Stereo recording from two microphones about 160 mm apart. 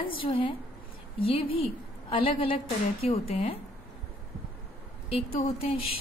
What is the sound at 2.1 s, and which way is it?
A woman's voice, 35° left (ahead or behind).